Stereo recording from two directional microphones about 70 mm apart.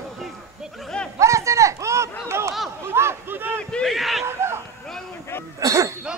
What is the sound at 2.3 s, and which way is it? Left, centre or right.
Snicker, right.